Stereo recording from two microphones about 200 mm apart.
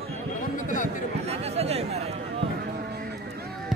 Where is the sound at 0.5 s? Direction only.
40° left (ahead or behind).